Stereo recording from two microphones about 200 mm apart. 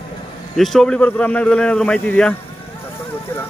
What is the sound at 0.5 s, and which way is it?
Speech, centre (ahead or behind).